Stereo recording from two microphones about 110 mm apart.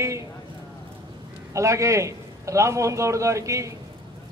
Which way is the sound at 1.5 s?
30° right (ahead or behind).